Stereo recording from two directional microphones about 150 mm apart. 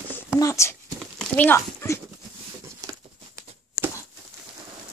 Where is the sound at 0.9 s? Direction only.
5° left (ahead or behind).